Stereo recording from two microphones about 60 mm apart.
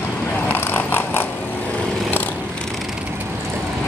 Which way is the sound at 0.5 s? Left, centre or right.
Left.